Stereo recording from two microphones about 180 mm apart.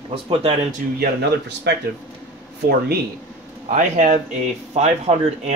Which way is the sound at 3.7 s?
40° right (ahead or behind).